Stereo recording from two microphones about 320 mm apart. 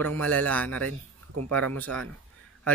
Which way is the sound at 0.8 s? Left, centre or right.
Right.